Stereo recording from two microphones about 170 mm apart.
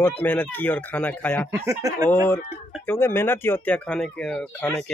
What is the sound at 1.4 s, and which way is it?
Speech, 20° right (ahead or behind).